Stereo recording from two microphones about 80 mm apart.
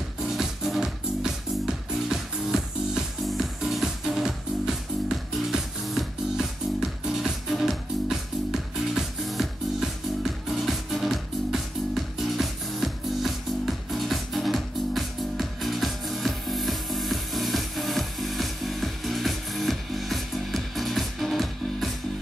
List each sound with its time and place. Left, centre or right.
0.2 s music: centre